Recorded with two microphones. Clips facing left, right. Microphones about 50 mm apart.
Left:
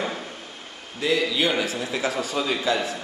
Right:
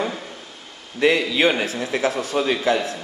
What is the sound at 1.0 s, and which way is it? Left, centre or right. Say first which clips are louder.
A man's voice: right 5 dB; right.